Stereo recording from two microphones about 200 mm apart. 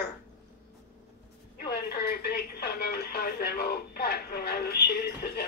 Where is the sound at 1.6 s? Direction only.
50° left (ahead or behind).